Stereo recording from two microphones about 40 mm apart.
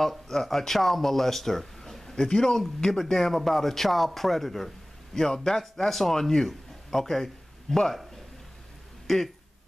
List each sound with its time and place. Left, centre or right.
0.3 s speech: centre
2.1 s a man's voice: centre
9.0 s speech: centre